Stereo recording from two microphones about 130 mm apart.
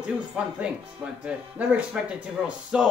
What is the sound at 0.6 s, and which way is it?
Speech, 10° right (ahead or behind).